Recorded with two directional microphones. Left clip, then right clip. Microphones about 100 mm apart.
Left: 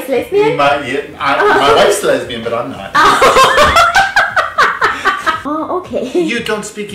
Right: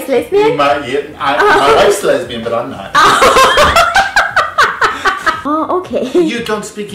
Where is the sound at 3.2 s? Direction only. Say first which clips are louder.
Even; 20° right (ahead or behind).